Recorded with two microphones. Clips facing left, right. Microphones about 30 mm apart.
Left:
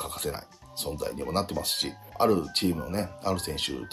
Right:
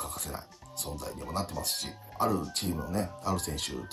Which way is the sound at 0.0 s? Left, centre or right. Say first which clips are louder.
Left 5 dB; left.